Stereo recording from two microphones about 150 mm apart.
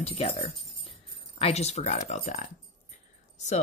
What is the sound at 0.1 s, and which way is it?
Speech, 40° left (ahead or behind).